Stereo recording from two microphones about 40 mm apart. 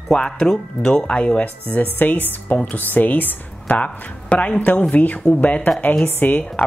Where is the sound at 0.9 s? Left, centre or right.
Left.